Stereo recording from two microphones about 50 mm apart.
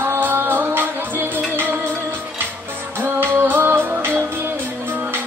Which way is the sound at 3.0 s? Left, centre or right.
Right.